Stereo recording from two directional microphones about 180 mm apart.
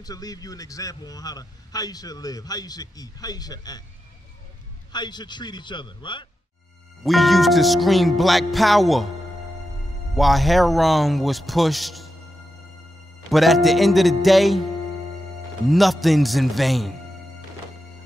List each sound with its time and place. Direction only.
0.0 s a man's voice: 20° left (ahead or behind)
4.9 s a man's voice: 25° left (ahead or behind)
7.0 s music: centre (ahead or behind)
10.1 s music: centre (ahead or behind)
13.3 s music: centre (ahead or behind)
15.7 s music: centre (ahead or behind)